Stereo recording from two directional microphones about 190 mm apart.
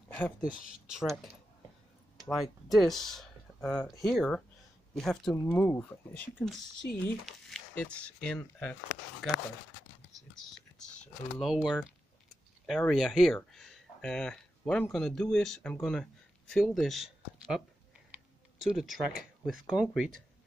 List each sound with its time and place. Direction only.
0.4 s speech: 5° right (ahead or behind)
2.3 s speech: centre (ahead or behind)
11.3 s speech: centre (ahead or behind)